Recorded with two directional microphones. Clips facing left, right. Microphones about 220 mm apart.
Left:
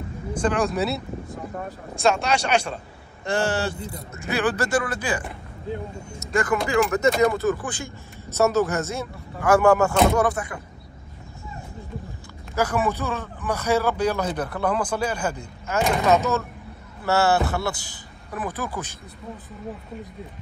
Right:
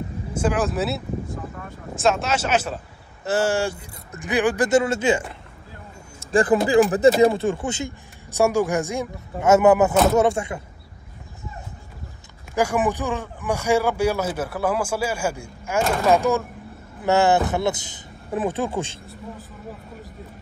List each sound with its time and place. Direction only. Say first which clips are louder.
0.3 s speech: even; 5° right (ahead or behind); by 10.6 s 25° right (ahead or behind)
12.5 s speech: right 2 dB; 15° right (ahead or behind)